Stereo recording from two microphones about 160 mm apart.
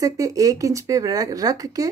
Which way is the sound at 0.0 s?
20° right (ahead or behind).